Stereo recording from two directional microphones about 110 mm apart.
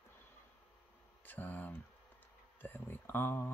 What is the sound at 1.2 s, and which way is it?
Speech, 15° left (ahead or behind).